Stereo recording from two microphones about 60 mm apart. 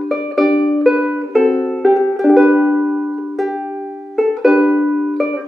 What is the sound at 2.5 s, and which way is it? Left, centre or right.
Music, right.